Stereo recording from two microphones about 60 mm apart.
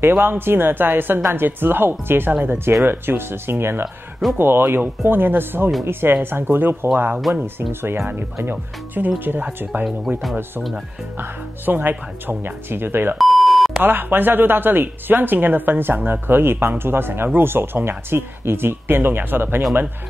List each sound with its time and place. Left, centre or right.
0.0 s speech: right
7.2 s speech: centre
7.4 s speech: right
11.1 s speech: right
13.2 s beep: centre
13.8 s speech: right